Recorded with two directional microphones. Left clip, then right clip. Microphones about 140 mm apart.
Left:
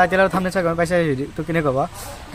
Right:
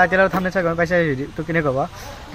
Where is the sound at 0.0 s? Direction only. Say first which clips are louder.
Even; 15° left (ahead or behind).